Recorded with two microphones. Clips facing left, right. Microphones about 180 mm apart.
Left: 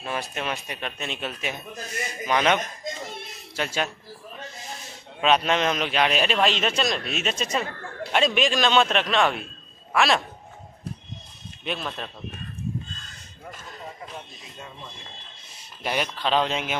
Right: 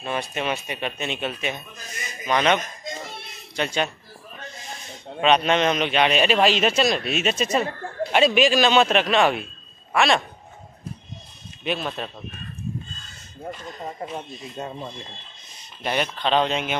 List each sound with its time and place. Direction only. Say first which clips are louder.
0.0 s a man's voice: right 3 dB; 5° left (ahead or behind)
5.2 s a man's voice: right 2 dB; centre (ahead or behind)
11.6 s a man's voice: right 4 dB; 5° right (ahead or behind)
14.6 s speech: right 10 dB; 40° right (ahead or behind)
15.8 s a man's voice: right 2 dB; 5° left (ahead or behind)